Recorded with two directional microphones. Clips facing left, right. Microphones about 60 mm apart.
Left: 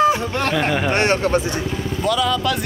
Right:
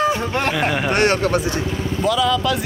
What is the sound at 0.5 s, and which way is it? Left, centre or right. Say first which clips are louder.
Speech: left 1 dB; centre.